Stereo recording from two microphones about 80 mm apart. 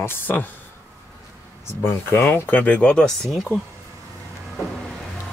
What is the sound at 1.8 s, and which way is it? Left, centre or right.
Speech, left.